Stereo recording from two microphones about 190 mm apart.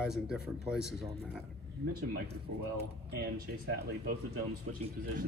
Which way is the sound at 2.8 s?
55° right (ahead or behind).